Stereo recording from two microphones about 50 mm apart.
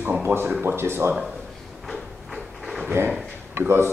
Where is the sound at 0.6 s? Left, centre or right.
Right.